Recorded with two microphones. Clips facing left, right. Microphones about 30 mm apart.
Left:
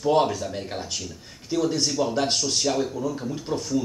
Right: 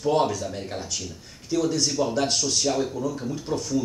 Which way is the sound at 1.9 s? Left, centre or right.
Centre.